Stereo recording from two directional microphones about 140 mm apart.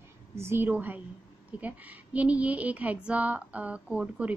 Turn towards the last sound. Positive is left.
turn(degrees=-10)  # may be behind; listen again after turning